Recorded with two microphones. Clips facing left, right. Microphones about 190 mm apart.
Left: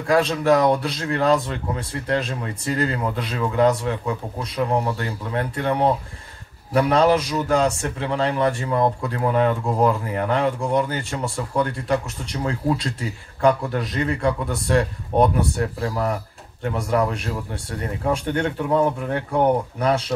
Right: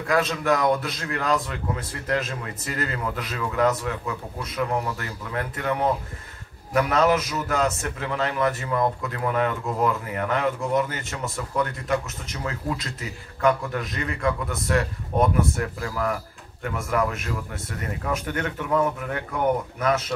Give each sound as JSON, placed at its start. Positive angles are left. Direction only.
{"t": 0.1, "sound": "a man's voice", "side_deg": 35}